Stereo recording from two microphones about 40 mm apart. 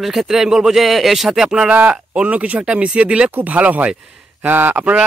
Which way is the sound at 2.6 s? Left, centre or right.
Right.